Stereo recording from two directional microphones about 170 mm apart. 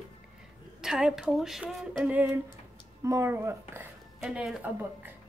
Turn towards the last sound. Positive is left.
turn(degrees=-10)  # may be behind; listen again after turning